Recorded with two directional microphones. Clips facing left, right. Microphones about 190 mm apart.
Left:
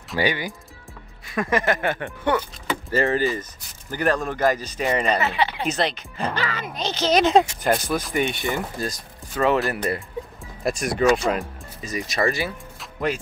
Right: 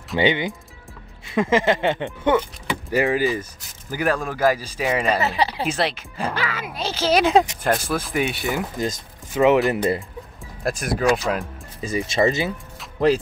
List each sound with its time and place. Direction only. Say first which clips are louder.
0.2 s speech: right 4 dB; 20° right (ahead or behind); by 5.2 s 5° right (ahead or behind)
5.2 s speech: right 1 dB; 35° right (ahead or behind)
5.7 s speech: right 1 dB; 5° right (ahead or behind)
8.7 s speech: right 3 dB; 20° right (ahead or behind)
10.6 s speech: left 1 dB; centre (ahead or behind)
11.8 s speech: right 4 dB; 30° right (ahead or behind)